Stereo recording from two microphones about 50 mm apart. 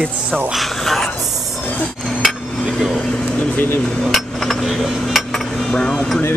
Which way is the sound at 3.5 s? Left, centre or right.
Left.